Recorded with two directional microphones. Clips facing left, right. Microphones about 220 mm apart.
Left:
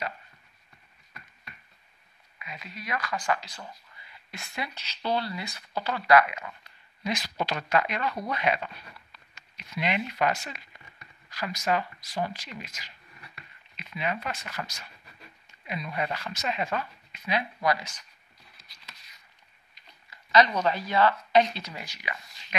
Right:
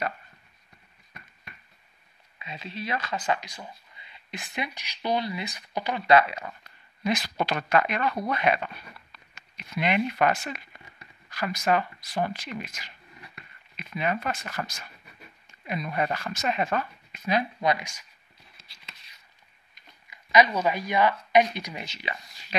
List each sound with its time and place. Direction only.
2.3 s speech: 25° right (ahead or behind)
7.0 s speech: 55° right (ahead or behind)
17.6 s speech: 20° right (ahead or behind)
18.6 s a sound: 25° right (ahead or behind)
20.1 s speech: 15° right (ahead or behind)